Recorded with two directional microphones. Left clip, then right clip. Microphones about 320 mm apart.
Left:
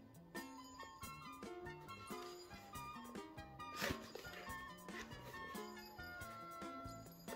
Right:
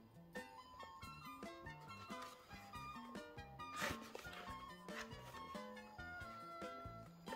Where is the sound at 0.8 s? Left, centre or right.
Centre.